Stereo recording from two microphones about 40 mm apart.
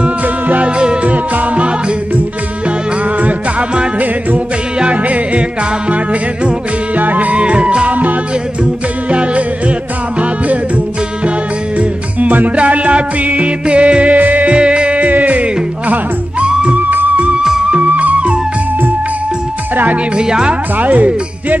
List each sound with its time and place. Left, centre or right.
0.2 s music: right
0.7 s music: right
1.1 s music: right
3.2 s music: right
4.9 s yodeling: right
7.0 s music: right
9.1 s music: right
11.8 s music: right
14.5 s music: right
16.7 s music: right
17.6 s music: right
19.7 s speech: right
20.2 s speech: centre
20.7 s speech: right